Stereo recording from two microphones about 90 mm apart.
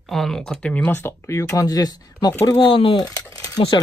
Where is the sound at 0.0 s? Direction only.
5° left (ahead or behind); by 2.3 s 45° left (ahead or behind).